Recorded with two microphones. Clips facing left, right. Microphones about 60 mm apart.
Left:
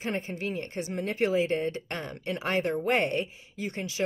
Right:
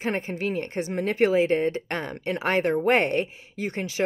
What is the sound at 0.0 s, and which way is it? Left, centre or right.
A woman's voice, right.